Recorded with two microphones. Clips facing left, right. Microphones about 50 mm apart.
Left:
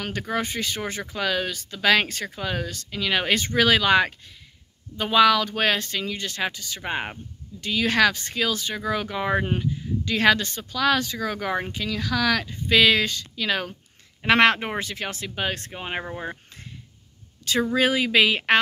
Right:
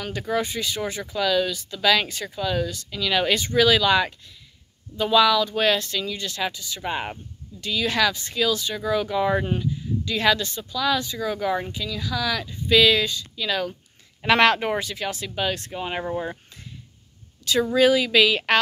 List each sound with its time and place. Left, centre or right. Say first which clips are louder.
0.0 s speech: right 2 dB; left
11.8 s speech: left 3 dB; left
17.7 s speech: right 3 dB; left